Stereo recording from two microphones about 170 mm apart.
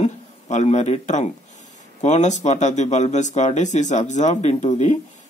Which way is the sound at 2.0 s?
45° left (ahead or behind).